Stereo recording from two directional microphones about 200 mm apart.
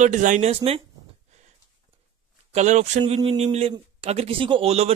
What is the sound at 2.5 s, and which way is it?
Speech, 35° right (ahead or behind).